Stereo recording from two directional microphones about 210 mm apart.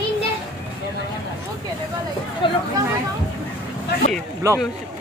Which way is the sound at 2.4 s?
25° left (ahead or behind).